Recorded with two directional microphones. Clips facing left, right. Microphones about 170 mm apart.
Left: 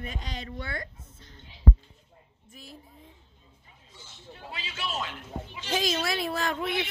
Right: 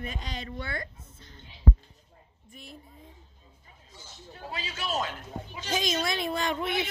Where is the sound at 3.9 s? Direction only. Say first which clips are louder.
Right 1 dB; 40° right (ahead or behind).